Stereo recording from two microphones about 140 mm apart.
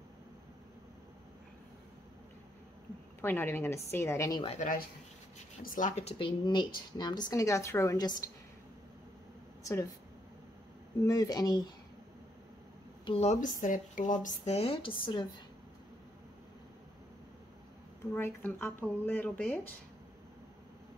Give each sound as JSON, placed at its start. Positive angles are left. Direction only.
{"t": 3.2, "sound": "speech", "side_deg": 15}
{"t": 4.6, "sound": "speech", "side_deg": 75}
{"t": 6.1, "sound": "a woman's voice", "side_deg": 35}
{"t": 9.6, "sound": "a sound", "side_deg": 20}
{"t": 11.1, "sound": "a woman's voice", "side_deg": 25}
{"t": 13.0, "sound": "speech", "side_deg": 45}
{"t": 18.1, "sound": "speech", "side_deg": 15}